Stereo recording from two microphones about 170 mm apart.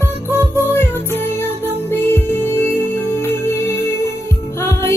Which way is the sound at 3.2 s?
15° left (ahead or behind).